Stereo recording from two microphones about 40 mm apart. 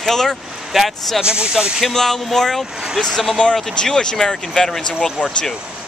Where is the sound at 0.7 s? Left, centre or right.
Centre.